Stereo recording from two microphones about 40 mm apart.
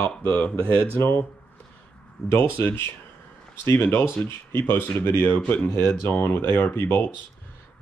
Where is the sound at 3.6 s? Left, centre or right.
Left.